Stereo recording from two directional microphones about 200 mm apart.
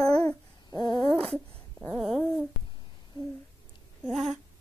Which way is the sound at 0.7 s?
20° left (ahead or behind).